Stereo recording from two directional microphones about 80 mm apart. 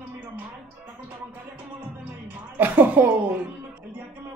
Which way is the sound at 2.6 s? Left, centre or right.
Right.